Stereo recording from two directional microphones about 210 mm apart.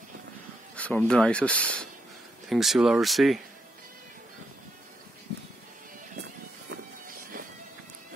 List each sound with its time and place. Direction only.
0.7 s speech: 5° left (ahead or behind)
6.7 s vehicle: 40° right (ahead or behind)